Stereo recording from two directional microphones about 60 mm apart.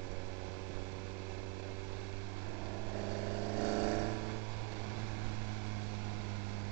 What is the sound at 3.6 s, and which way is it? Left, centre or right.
Vehicle, right.